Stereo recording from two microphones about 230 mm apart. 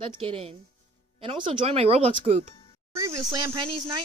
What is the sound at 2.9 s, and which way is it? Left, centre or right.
Speech, centre.